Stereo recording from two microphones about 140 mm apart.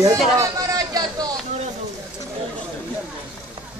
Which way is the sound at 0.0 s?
25° right (ahead or behind).